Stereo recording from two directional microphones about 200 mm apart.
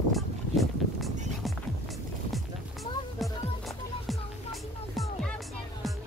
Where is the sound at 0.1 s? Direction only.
Centre (ahead or behind).